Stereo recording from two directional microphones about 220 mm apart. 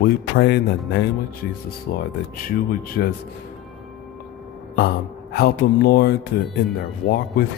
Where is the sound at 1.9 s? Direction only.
40° left (ahead or behind).